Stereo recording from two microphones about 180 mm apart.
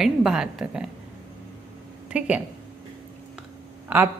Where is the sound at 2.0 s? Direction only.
5° right (ahead or behind).